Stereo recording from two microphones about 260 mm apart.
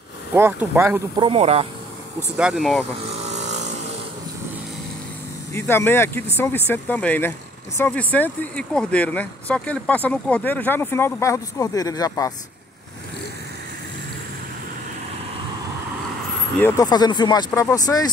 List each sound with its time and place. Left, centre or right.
0.3 s speech: centre
2.3 s speech: centre
3.3 s vehicle: right
5.5 s speech: centre
16.5 s speech: centre